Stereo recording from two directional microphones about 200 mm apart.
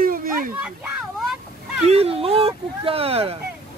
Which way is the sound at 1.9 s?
30° right (ahead or behind).